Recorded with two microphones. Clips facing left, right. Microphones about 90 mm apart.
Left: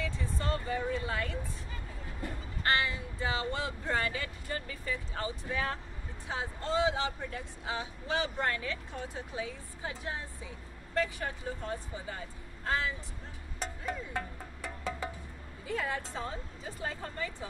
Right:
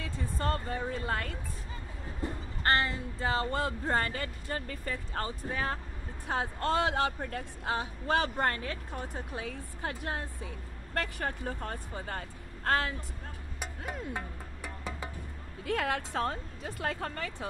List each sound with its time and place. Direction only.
0.0 s speech: 45° right (ahead or behind)
2.2 s train: 25° right (ahead or behind)
2.6 s a woman's voice: 40° right (ahead or behind)
6.2 s a woman's voice: 55° right (ahead or behind)
13.6 s music: 15° right (ahead or behind)
15.6 s speech: 65° right (ahead or behind)